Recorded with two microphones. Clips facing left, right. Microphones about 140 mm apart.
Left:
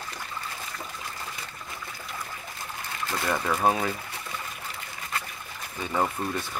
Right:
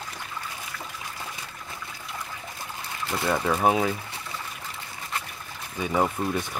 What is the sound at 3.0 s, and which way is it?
Speech, 10° right (ahead or behind).